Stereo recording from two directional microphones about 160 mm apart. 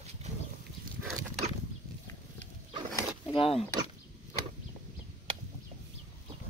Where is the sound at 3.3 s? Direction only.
40° left (ahead or behind).